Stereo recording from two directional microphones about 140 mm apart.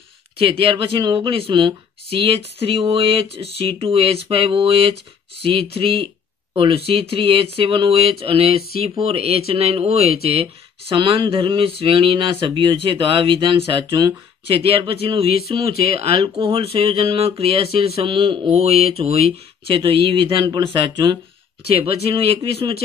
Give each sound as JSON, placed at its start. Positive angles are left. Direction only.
{"t": 0.4, "sound": "speech", "side_deg": -40}
{"t": 22.6, "sound": "speech", "side_deg": -40}